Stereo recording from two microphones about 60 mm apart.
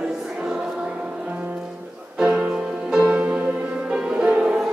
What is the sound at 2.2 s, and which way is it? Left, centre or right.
Music, right.